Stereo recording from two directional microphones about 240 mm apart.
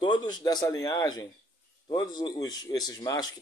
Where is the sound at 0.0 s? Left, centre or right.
Centre.